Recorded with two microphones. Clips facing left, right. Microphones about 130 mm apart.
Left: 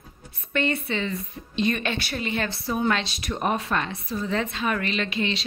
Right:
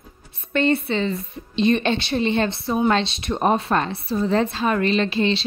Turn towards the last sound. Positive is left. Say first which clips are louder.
# right 7 dB
turn(degrees=-30)  # may be behind; listen again after turning